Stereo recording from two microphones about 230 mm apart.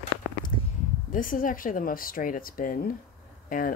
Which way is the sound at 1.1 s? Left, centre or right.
Left.